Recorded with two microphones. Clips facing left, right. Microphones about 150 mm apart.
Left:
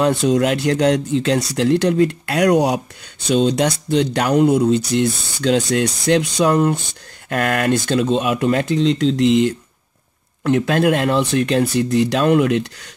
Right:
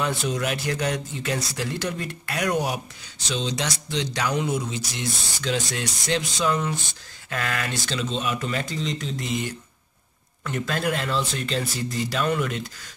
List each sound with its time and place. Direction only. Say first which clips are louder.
0.0 s speech: left 10 dB; 65° left (ahead or behind)
3.3 s speech: left 12 dB; 55° left (ahead or behind); by 9.5 s 75° left (ahead or behind)
10.4 s speech: left 11 dB; 65° left (ahead or behind)